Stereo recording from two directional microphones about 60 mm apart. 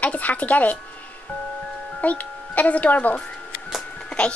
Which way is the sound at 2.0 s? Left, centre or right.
Left.